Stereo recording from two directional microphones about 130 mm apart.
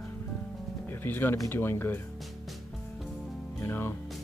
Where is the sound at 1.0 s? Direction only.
15° left (ahead or behind).